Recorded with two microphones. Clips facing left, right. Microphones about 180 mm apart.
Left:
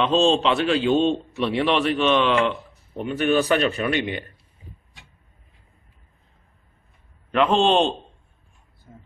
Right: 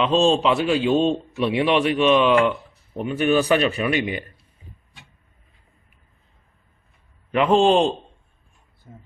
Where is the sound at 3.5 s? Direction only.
20° right (ahead or behind).